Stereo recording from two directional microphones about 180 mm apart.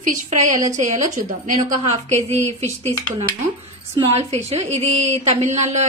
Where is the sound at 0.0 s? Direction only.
45° right (ahead or behind).